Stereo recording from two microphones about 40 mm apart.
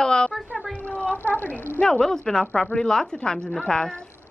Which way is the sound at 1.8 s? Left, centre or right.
Centre.